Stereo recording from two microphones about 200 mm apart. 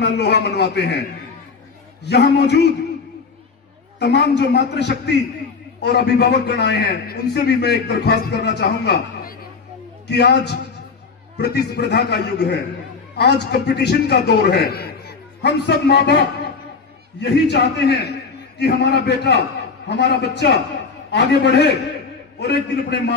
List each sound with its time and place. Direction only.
0.0 s a man's voice: 55° left (ahead or behind)
2.0 s a man's voice: 55° left (ahead or behind)
4.0 s a man's voice: 60° left (ahead or behind)
17.2 s a man's voice: 55° left (ahead or behind)